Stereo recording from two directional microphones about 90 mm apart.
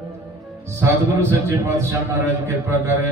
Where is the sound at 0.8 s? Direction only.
30° right (ahead or behind).